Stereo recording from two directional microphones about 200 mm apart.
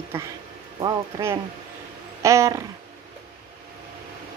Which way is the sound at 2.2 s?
15° right (ahead or behind).